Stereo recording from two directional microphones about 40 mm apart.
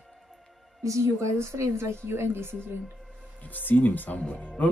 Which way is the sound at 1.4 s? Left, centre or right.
Right.